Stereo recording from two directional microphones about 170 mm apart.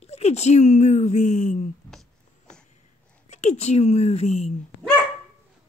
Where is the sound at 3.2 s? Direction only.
40° left (ahead or behind).